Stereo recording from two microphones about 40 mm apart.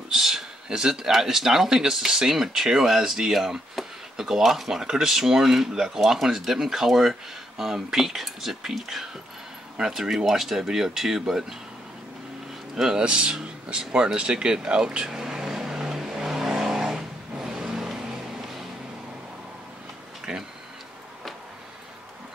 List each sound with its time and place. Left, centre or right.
0.1 s speech: centre
12.7 s a sound: centre
20.3 s tick-tock: right